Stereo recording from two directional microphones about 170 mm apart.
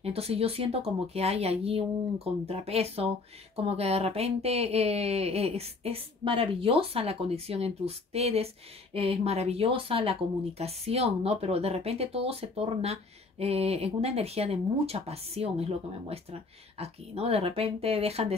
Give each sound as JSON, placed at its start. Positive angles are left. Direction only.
{"t": 0.0, "sound": "speech", "side_deg": -35}